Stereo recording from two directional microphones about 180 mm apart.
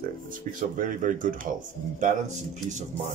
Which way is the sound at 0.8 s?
45° right (ahead or behind).